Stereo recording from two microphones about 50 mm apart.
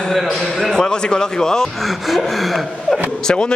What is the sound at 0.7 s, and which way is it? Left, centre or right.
Speech, centre.